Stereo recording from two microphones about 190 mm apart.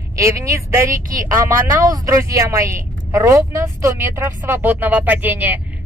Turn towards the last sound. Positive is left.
turn(degrees=-10)  # may be behind; listen again after turning